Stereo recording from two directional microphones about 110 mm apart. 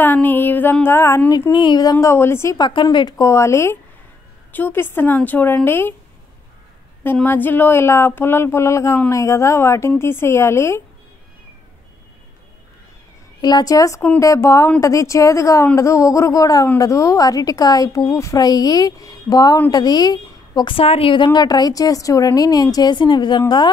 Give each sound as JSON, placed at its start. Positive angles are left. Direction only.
{"t": 0.0, "sound": "speech", "side_deg": 15}
{"t": 1.5, "sound": "speech", "side_deg": 45}
{"t": 2.5, "sound": "speech", "side_deg": 40}
{"t": 3.2, "sound": "speech", "side_deg": 25}
{"t": 7.2, "sound": "speech", "side_deg": 15}
{"t": 13.4, "sound": "a woman's voice", "side_deg": 40}
{"t": 20.7, "sound": "speech", "side_deg": 60}